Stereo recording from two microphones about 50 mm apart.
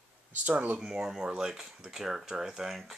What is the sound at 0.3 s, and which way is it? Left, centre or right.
Speech, right.